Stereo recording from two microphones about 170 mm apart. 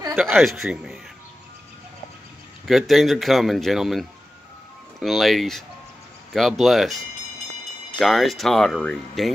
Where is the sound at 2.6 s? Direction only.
Centre (ahead or behind).